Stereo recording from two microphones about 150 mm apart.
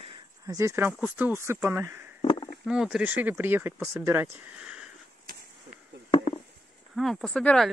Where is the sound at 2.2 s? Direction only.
35° left (ahead or behind).